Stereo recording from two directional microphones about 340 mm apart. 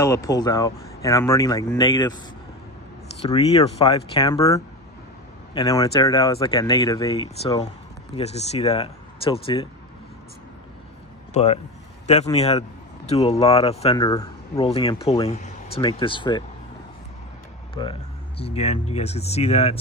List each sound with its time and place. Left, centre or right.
0.0 s a man's voice: centre
3.2 s a man's voice: centre
11.3 s a man's voice: centre
17.8 s a man's voice: centre